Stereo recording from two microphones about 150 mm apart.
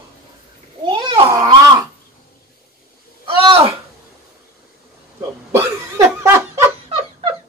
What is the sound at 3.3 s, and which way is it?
Speech, 40° right (ahead or behind).